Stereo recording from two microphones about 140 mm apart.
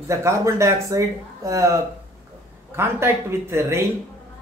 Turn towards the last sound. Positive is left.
turn(degrees=-20)  # may be behind; listen again after turning